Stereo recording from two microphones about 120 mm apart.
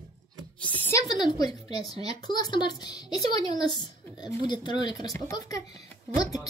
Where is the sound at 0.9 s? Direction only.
30° left (ahead or behind).